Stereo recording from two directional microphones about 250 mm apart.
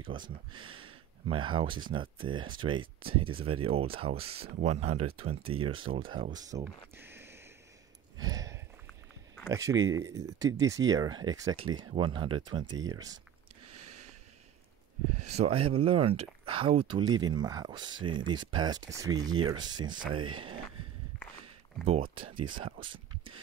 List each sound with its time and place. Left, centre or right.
0.0 s speech: centre
8.2 s a sound: centre
9.5 s speech: centre
13.7 s a sound: right
15.2 s speech: right
21.8 s speech: right